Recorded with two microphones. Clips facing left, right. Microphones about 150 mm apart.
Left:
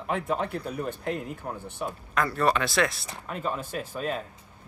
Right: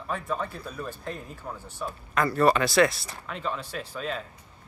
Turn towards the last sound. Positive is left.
turn(degrees=50)  # may be behind; listen again after turning